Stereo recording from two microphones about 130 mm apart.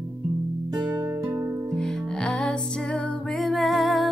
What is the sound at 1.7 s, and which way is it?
Music, 5° left (ahead or behind).